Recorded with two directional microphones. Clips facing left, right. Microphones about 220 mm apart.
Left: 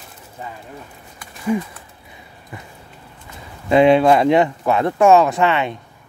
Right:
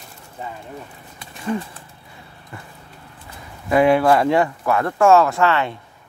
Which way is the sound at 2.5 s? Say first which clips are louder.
Left 2 dB; 15° left (ahead or behind).